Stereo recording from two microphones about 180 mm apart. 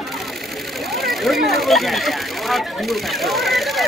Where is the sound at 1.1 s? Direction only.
Centre (ahead or behind).